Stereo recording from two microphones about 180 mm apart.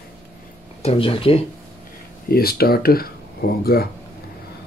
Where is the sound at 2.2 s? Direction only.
60° left (ahead or behind).